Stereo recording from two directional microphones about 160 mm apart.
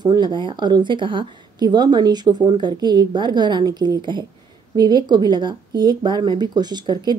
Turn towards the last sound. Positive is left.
turn(degrees=-25)  # may be behind; listen again after turning